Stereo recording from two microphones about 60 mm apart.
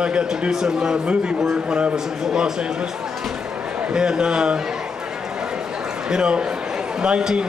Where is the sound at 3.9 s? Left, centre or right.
Centre.